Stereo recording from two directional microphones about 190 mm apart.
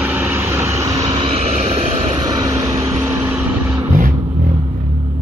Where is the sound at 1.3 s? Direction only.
35° right (ahead or behind).